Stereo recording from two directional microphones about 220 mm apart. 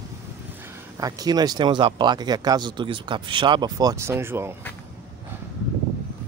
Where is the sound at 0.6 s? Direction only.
15° right (ahead or behind).